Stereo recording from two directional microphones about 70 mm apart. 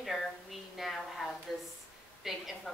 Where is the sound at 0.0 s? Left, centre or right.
Centre.